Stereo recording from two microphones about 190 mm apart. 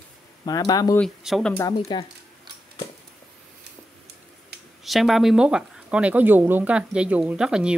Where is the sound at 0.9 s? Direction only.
Centre (ahead or behind).